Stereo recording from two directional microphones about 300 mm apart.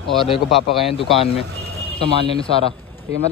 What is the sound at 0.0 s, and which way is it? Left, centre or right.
Speech, centre.